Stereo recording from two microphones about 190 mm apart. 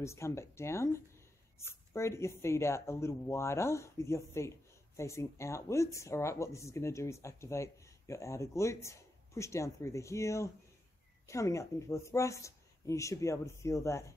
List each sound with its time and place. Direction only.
0.0 s speech: 15° left (ahead or behind)